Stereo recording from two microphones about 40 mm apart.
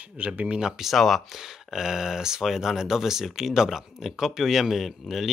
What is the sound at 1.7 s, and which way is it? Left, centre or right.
Speech, centre.